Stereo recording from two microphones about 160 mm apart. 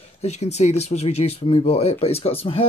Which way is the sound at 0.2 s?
45° left (ahead or behind).